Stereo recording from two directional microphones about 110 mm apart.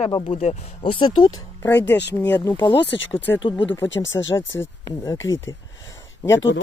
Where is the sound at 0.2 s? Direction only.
75° left (ahead or behind); by 1.3 s 50° left (ahead or behind).